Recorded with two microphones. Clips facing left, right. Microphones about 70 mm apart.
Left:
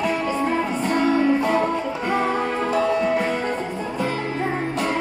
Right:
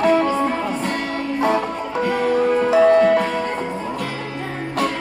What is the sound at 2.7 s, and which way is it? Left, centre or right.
Music, right.